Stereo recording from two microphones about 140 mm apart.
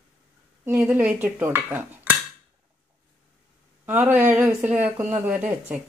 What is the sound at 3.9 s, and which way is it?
Dishes, 10° right (ahead or behind).